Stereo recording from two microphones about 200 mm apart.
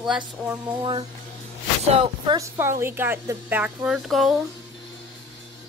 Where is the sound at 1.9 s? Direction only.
30° right (ahead or behind).